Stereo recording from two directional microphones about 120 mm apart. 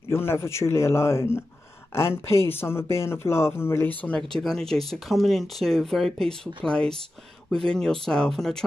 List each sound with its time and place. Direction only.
0.1 s speech: 20° left (ahead or behind); by 8.6 s 5° left (ahead or behind)